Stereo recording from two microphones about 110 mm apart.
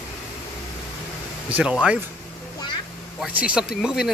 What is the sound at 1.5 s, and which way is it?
Speech, 10° right (ahead or behind).